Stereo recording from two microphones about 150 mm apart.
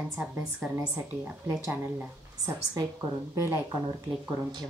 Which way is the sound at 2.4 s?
20° right (ahead or behind).